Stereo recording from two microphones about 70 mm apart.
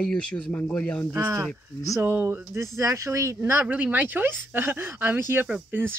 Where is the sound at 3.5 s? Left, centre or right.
Right.